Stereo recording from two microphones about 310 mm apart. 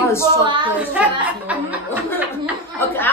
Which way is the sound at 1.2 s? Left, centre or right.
Centre.